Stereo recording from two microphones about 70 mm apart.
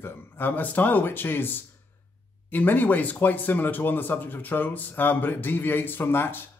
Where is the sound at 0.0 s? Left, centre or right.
Left.